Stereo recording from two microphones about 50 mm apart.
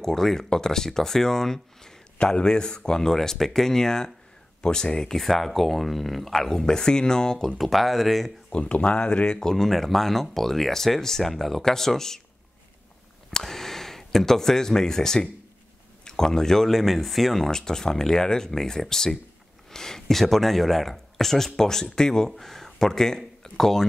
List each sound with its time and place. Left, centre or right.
0.0 s speech: centre
7.5 s speech: centre
8.5 s speech: left
13.3 s speech: centre